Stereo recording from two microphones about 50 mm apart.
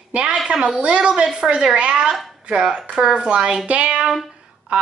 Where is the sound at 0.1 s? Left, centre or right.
Right.